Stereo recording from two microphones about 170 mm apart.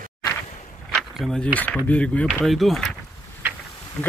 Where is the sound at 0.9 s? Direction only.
Centre (ahead or behind).